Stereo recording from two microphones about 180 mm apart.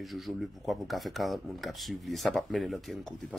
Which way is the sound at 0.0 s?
Centre (ahead or behind).